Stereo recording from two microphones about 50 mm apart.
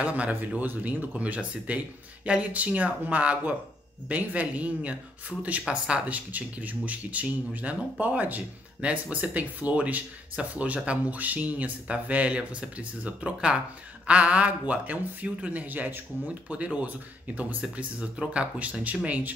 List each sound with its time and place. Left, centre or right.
0.0 s speech: right
16.4 s speech: right